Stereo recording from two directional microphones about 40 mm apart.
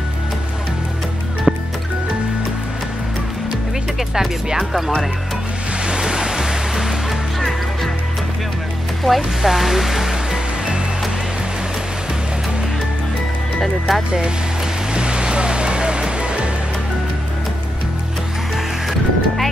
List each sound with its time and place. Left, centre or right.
1.5 s music: centre
4.1 s speech: centre
5.9 s music: right
7.3 s music: centre
9.0 s speech: centre
13.6 s speech: centre
15.0 s music: right
18.9 s music: centre